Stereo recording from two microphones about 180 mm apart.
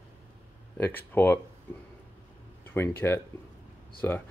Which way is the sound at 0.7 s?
10° left (ahead or behind).